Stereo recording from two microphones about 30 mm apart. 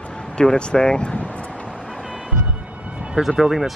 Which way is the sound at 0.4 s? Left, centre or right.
Left.